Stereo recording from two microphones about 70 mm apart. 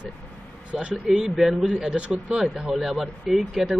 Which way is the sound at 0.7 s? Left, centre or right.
Centre.